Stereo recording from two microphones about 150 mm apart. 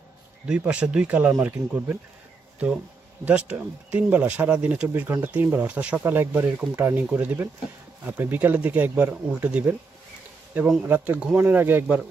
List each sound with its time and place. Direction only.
0.5 s speech: 5° right (ahead or behind)
3.3 s speech: 10° right (ahead or behind)